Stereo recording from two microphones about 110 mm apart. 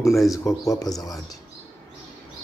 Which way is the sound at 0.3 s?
30° left (ahead or behind).